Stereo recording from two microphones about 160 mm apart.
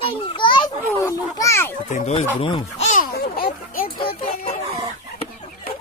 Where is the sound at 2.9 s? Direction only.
55° left (ahead or behind).